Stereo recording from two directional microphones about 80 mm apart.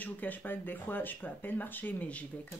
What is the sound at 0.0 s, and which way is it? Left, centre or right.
Speech, left.